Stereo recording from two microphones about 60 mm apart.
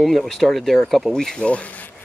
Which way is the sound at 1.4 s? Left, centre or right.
Left.